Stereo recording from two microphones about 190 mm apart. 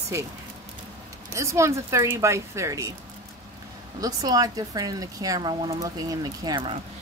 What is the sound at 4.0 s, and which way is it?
Speech, 20° right (ahead or behind).